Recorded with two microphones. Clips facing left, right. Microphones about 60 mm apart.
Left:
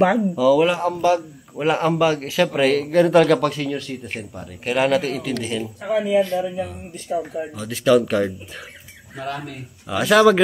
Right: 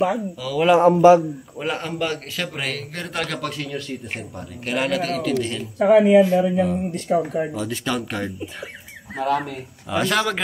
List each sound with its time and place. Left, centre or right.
0.4 s speech: centre
0.7 s a man's voice: right
1.6 s speech: centre
5.8 s speech: right
7.5 s speech: centre